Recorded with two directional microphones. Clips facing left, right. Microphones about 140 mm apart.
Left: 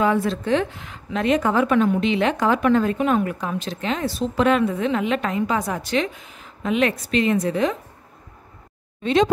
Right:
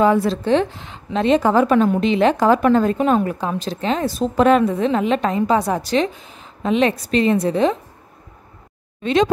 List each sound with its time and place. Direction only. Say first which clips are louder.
0.0 s a woman's voice: right 4 dB; 35° right (ahead or behind)
9.0 s speech: right 1 dB; 90° right